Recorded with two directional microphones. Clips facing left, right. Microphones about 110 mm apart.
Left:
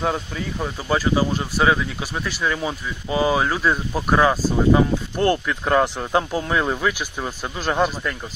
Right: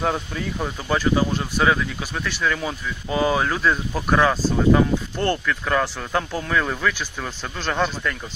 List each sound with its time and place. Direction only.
0.0 s speech: centre (ahead or behind)
5.7 s speech: 30° left (ahead or behind); by 8.2 s 10° left (ahead or behind)